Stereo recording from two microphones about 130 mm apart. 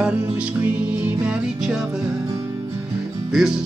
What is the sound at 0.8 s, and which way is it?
Music, 10° right (ahead or behind).